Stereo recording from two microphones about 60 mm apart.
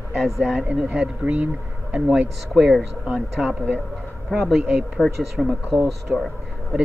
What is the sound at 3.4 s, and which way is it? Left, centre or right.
Speech, right.